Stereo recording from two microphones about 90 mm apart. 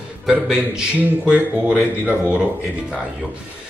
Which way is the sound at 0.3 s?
10° right (ahead or behind).